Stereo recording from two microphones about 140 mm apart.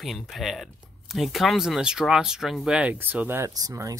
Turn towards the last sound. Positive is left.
turn(degrees=-20)  # may be behind; listen again after turning